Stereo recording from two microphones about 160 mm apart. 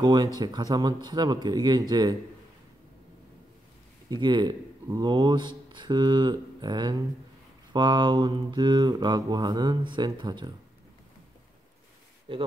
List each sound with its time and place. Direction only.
0.0 s speech: 25° right (ahead or behind)
4.1 s speech: 30° right (ahead or behind)
12.3 s speech: 35° right (ahead or behind)